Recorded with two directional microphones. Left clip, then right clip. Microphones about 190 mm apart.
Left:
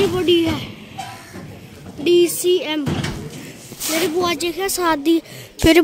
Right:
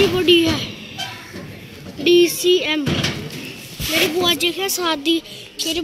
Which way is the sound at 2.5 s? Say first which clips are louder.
Right 2 dB; 5° left (ahead or behind).